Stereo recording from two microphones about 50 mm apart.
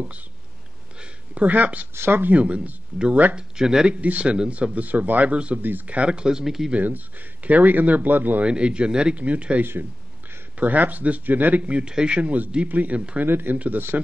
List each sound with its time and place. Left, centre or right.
1.3 s speech: right
2.0 s speech: right
2.3 s speech: right
3.3 s speech: centre
3.9 s speech: right
5.6 s speech: right
6.0 s speech: centre
6.7 s speech: right
8.5 s speech: right
9.6 s speech: right; by 12.3 s centre
12.6 s speech: right
13.2 s speech: right
14.0 s speech: right